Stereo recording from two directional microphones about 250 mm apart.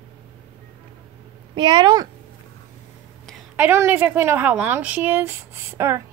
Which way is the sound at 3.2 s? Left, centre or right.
Centre.